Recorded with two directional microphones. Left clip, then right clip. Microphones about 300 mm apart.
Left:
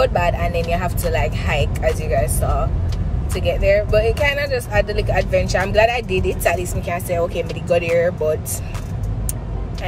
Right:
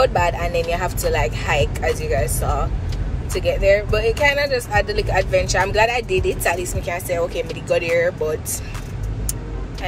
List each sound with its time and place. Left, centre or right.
0.0 s speech: centre